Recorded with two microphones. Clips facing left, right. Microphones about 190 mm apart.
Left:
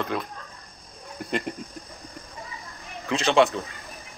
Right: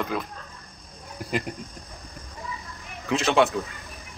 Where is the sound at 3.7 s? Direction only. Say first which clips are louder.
Even; 35° left (ahead or behind).